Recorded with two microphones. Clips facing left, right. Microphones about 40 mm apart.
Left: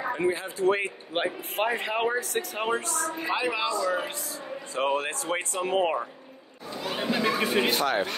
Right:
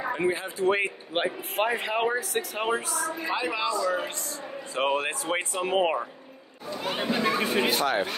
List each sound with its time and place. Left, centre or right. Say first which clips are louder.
0.1 s a man's voice: even; centre
3.3 s a man's voice: left 1 dB; centre
4.7 s speech: right 1 dB; centre
6.8 s speech: right 1 dB; right
7.1 s a man's voice: even; centre